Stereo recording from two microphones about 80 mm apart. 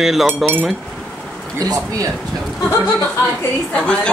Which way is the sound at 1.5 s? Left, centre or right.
Right.